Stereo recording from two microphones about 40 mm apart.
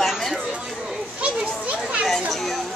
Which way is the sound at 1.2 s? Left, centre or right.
Right.